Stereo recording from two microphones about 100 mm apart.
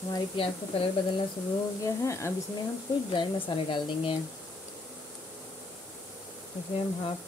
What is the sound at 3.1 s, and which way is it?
Speech, 55° left (ahead or behind).